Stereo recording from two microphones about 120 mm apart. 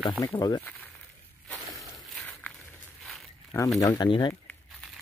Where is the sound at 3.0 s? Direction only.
Centre (ahead or behind).